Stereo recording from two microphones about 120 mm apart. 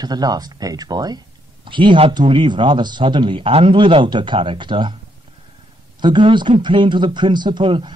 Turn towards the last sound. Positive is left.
turn(degrees=-45)  # may be behind; listen again after turning